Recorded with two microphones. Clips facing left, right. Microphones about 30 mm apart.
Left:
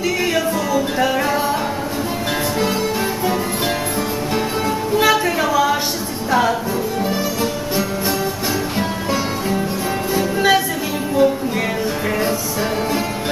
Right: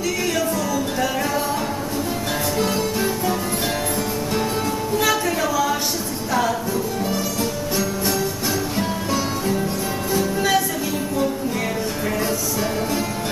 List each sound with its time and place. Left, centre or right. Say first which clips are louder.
0.3 s music: left 3 dB; left
4.9 s a sound: left 5 dB; left
8.7 s music: left 2 dB; centre